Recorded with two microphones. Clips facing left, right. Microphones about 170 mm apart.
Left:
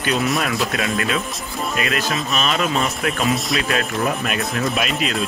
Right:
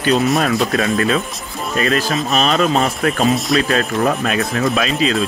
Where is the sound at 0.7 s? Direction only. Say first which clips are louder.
Right 5 dB; 35° right (ahead or behind).